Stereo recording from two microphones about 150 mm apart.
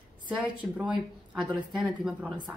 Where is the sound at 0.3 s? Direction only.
10° right (ahead or behind).